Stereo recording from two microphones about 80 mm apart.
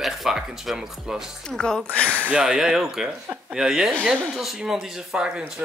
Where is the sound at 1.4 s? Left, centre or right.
Centre.